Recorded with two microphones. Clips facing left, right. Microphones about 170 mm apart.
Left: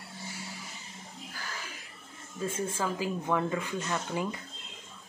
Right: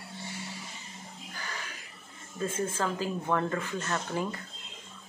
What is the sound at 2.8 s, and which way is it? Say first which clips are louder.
Speech: right 1 dB; 10° left (ahead or behind).